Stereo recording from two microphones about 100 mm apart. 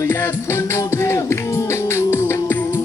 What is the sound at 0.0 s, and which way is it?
Music, 25° left (ahead or behind).